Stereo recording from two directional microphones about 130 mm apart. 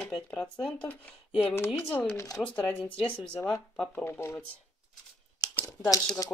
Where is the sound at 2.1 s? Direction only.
25° left (ahead or behind).